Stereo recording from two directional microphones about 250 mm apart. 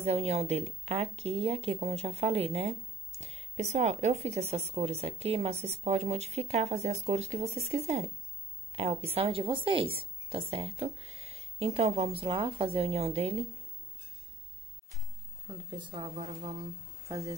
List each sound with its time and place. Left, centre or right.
0.0 s speech: right
15.4 s speech: centre